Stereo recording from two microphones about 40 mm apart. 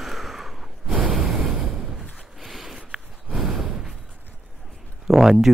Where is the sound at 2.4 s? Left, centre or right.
Centre.